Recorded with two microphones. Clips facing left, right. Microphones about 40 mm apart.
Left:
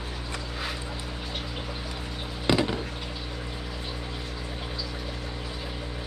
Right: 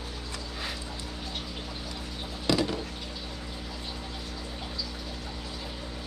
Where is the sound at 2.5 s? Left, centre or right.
Left.